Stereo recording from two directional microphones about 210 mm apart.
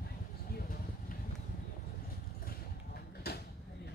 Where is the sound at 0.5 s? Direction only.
45° left (ahead or behind).